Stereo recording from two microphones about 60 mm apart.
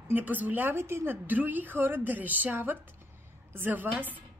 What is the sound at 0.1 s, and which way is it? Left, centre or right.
Speech, right.